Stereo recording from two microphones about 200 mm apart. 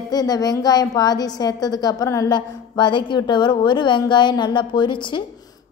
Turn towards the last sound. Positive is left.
turn(degrees=25)  # may be behind; listen again after turning